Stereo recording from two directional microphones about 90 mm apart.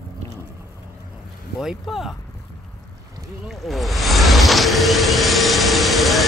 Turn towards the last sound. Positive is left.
turn(degrees=0)  # may be behind; listen again after turning